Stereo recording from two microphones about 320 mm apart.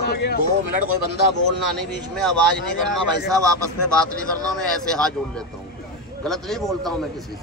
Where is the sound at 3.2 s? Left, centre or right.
Centre.